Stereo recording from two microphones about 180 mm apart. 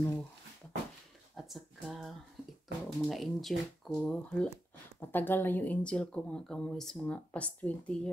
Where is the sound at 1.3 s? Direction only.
Centre (ahead or behind).